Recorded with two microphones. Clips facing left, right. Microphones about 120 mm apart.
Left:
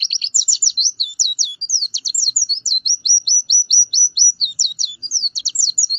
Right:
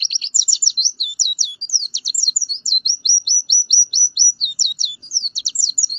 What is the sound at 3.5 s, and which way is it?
Chirp, 50° right (ahead or behind).